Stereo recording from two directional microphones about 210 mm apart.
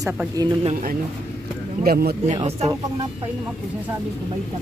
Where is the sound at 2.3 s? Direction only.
30° right (ahead or behind).